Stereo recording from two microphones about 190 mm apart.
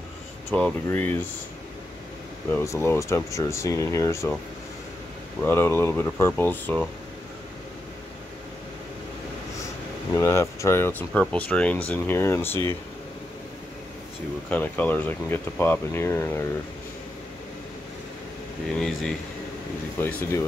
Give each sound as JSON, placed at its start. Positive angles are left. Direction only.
{"t": 0.5, "sound": "speech", "side_deg": 5}
{"t": 2.5, "sound": "speech", "side_deg": 15}
{"t": 5.4, "sound": "speech", "side_deg": 10}
{"t": 10.1, "sound": "speech", "side_deg": 15}
{"t": 14.5, "sound": "speech", "side_deg": 10}
{"t": 18.8, "sound": "speech", "side_deg": 0}
{"t": 20.0, "sound": "speech", "side_deg": 10}